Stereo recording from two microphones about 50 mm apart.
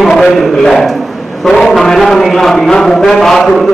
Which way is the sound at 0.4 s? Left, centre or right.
Centre.